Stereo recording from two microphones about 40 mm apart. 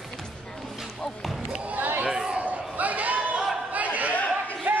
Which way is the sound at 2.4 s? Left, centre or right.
Right.